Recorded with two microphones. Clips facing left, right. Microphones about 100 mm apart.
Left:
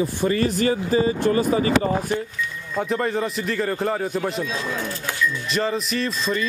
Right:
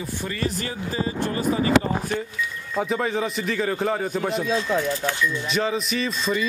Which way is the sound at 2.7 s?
Centre (ahead or behind).